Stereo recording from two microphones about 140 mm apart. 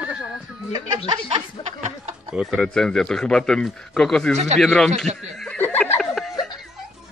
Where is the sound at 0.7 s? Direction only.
30° right (ahead or behind).